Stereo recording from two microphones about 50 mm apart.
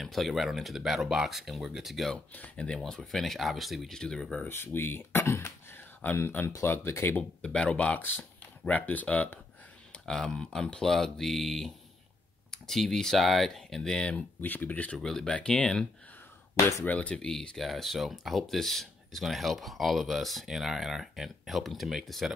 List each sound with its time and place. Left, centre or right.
0.0 s speech: centre
2.3 s speech: left
2.8 s speech: centre
3.9 s speech: centre
4.5 s speech: left
7.4 s speech: left
8.0 s speech: left
9.9 s speech: centre
14.4 s speech: left
15.0 s speech: centre
16.8 s speech: left
17.1 s speech: centre